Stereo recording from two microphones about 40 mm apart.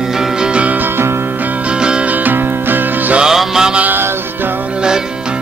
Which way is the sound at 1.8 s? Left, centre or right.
Right.